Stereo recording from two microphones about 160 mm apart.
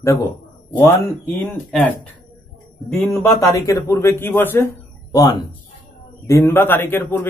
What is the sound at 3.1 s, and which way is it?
A man's voice, 20° left (ahead or behind).